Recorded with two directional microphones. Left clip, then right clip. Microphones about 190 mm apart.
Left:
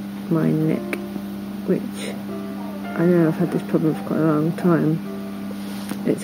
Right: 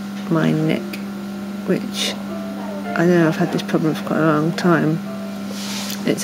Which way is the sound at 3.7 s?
15° right (ahead or behind).